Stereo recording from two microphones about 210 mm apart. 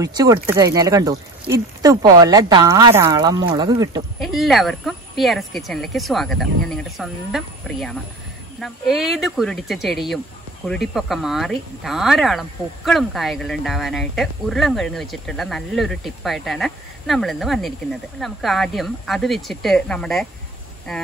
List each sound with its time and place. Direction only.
0.0 s speech: 15° right (ahead or behind)
4.2 s speech: centre (ahead or behind)